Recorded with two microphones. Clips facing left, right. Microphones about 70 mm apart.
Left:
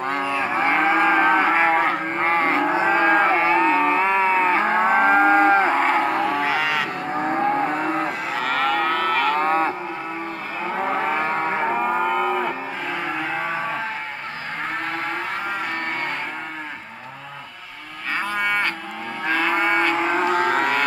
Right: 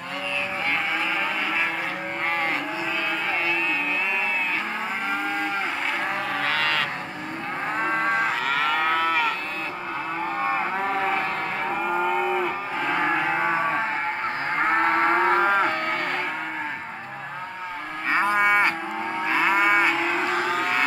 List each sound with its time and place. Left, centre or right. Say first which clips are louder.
0.3 s moo: left 5 dB; left
0.7 s cattle: left 11 dB; left
2.1 s livestock: left 5 dB; left
2.7 s cattle: left 10 dB; left
6.4 s cattle: left 3 dB; centre
7.2 s vehicle: left 9 dB; left
8.5 s livestock: left 2 dB; centre
9.3 s cattle: left 11 dB; left
11.1 s livestock: left 4 dB; left
11.8 s livestock: left 3 dB; centre
14.6 s moo: right 7 dB; right
18.1 s livestock: right 3 dB; right
20.2 s a sound: left 5 dB; left